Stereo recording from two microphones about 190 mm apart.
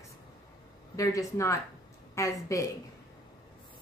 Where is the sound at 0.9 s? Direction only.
15° left (ahead or behind).